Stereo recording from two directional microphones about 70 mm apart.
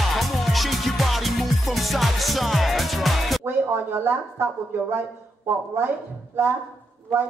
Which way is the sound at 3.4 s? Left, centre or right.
Right.